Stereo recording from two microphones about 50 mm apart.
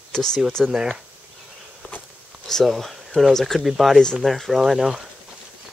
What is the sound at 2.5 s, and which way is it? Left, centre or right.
Speech, centre.